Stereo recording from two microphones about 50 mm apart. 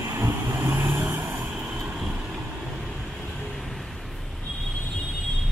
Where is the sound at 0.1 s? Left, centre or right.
Right.